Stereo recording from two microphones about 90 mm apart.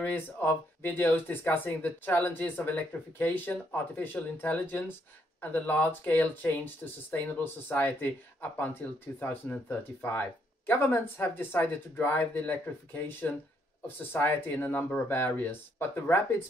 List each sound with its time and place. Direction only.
0.0 s speech: 20° left (ahead or behind)